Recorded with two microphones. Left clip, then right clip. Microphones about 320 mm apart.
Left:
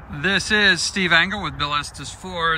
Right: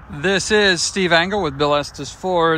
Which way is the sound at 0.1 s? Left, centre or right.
Centre.